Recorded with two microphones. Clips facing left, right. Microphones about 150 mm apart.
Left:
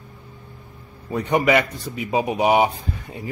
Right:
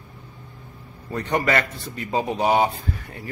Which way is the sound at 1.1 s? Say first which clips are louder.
Left 4 dB; 10° left (ahead or behind).